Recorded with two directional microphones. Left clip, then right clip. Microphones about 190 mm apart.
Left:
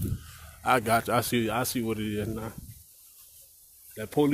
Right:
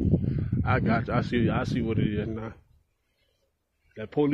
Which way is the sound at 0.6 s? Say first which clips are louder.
Left 4 dB; 25° left (ahead or behind).